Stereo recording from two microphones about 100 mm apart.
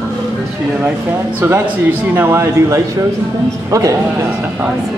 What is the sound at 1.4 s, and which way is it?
Speech, 25° right (ahead or behind).